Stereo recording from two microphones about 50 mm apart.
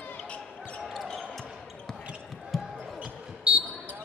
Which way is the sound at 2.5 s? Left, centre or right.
Centre.